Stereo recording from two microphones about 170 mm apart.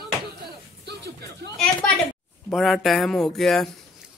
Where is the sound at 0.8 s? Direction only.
80° right.